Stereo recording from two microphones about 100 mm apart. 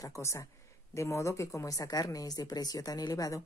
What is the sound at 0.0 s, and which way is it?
Speech, 30° left (ahead or behind).